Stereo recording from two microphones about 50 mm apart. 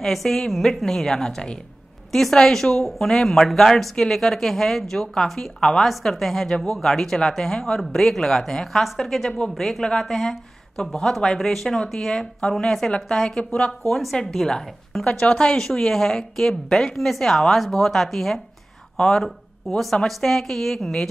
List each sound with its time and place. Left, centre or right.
0.0 s a woman's voice: centre
13.4 s speech: left
13.8 s a woman's voice: centre
15.0 s a woman's voice: left